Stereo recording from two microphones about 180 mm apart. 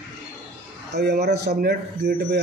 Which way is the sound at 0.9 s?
65° right (ahead or behind).